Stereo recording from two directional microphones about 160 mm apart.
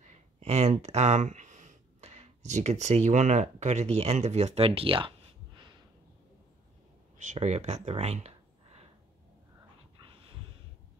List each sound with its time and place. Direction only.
0.0 s speech: 45° right (ahead or behind)
7.2 s speech: 50° right (ahead or behind)